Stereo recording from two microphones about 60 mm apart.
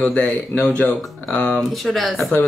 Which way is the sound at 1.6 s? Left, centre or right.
Centre.